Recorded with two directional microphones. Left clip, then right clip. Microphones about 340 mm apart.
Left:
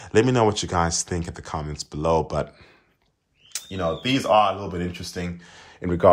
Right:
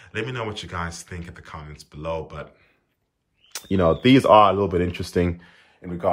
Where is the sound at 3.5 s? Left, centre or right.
Centre.